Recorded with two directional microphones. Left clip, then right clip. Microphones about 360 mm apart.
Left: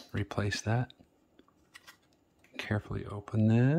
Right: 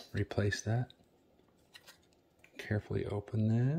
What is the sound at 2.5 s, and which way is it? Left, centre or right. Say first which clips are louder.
Speech: left 2 dB; centre.